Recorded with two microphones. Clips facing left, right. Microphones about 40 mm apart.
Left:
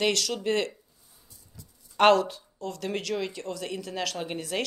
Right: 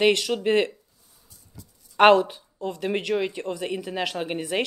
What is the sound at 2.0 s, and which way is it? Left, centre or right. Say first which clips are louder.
Speech: right 4 dB; right.